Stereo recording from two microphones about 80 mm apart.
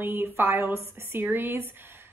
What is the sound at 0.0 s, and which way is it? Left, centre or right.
A woman's voice, right.